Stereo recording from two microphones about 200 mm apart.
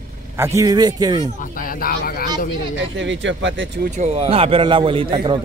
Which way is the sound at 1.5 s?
45° left (ahead or behind).